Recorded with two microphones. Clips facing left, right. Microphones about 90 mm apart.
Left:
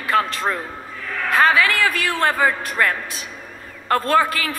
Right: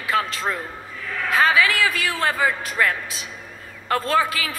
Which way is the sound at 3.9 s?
45° left (ahead or behind).